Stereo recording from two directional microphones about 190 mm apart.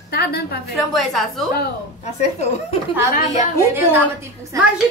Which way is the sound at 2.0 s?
35° left (ahead or behind).